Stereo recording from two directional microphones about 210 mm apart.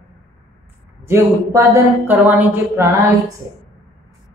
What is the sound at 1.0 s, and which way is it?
Speech, 15° right (ahead or behind).